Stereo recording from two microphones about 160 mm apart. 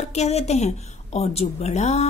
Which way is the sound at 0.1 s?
45° left (ahead or behind).